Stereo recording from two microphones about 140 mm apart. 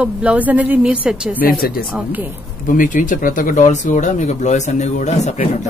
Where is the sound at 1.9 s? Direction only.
10° right (ahead or behind).